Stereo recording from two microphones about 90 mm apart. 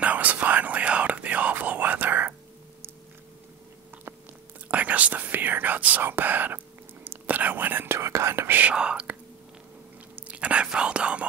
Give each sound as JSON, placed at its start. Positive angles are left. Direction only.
{"t": 0.0, "sound": "whispering", "side_deg": -15}
{"t": 4.6, "sound": "speech", "side_deg": -15}
{"t": 10.1, "sound": "speech", "side_deg": -15}